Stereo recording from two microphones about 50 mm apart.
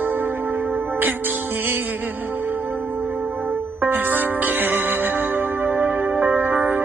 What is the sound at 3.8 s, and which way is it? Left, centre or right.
Music, right.